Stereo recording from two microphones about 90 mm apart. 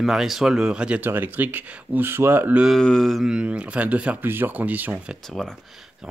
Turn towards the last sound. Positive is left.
turn(degrees=5)  # may be behind; listen again after turning